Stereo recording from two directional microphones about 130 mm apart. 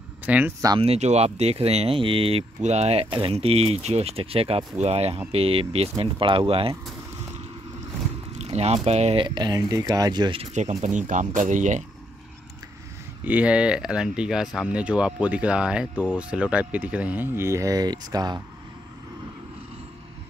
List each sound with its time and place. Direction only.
0.2 s speech: 15° right (ahead or behind)
0.7 s speech: 55° right (ahead or behind)
8.4 s speech: 55° right (ahead or behind)
9.2 s speech: 35° right (ahead or behind)
10.4 s speech: 60° right (ahead or behind)
13.2 s speech: 10° right (ahead or behind); by 18.4 s 30° right (ahead or behind)